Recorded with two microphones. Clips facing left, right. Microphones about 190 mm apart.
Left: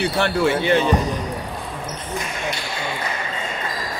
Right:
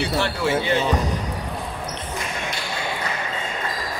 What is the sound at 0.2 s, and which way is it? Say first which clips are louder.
Speech: left 6 dB; 60° left (ahead or behind).